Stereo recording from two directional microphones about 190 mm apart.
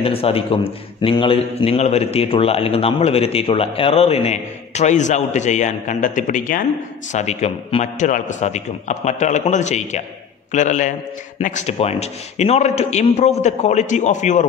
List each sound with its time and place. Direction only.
0.0 s a man's voice: 30° left (ahead or behind)